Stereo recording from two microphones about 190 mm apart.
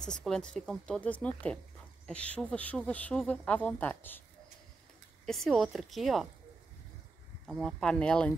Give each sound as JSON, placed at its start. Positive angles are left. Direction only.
{"t": 0.0, "sound": "speech", "side_deg": 5}
{"t": 5.2, "sound": "speech", "side_deg": 0}
{"t": 7.4, "sound": "speech", "side_deg": 0}